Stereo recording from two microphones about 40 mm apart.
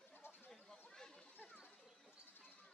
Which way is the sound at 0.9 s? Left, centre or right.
Centre.